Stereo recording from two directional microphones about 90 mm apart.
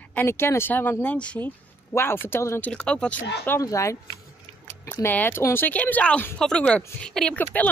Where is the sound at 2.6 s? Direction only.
10° left (ahead or behind).